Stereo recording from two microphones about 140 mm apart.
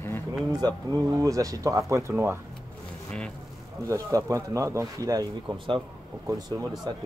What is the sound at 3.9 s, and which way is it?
Speech, 25° right (ahead or behind).